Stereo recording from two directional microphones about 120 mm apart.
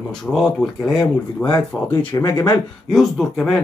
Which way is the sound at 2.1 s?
30° left (ahead or behind).